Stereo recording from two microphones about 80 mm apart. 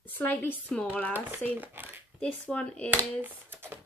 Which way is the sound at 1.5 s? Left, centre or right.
Right.